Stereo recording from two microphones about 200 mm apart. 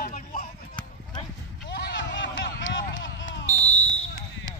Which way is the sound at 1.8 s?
65° left (ahead or behind).